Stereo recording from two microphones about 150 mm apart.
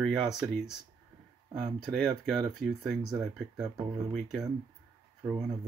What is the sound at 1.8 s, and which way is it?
Speech, centre (ahead or behind).